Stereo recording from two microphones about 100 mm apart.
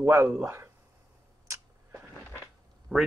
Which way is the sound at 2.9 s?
5° right (ahead or behind).